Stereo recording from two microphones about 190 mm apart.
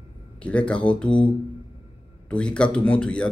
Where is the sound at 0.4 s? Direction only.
5° left (ahead or behind).